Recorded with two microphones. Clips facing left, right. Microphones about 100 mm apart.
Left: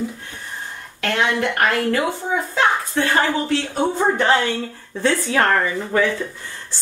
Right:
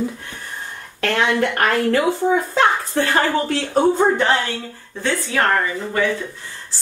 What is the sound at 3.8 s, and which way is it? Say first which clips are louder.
Speech: right 2 dB; centre (ahead or behind).